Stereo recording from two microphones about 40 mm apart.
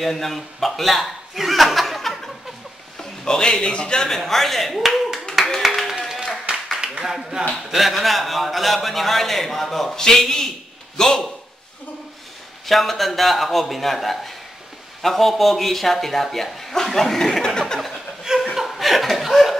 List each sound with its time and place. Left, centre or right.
0.0 s a man's voice: centre
1.4 s chuckle: centre
3.0 s a man's voice: centre
4.3 s speech: centre
5.9 s a sound: centre
6.8 s clapping: centre
7.4 s speech: right
7.7 s a man's voice: centre
12.6 s speech: centre
18.2 s chuckle: centre